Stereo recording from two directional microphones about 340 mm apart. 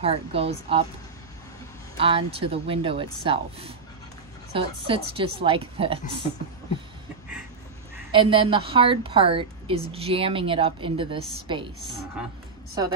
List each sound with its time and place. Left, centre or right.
0.0 s a woman's voice: centre
2.0 s a woman's voice: centre
8.1 s a woman's voice: centre